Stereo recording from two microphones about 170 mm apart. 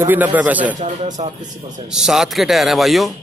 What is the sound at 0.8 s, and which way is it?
Speech, 45° right (ahead or behind).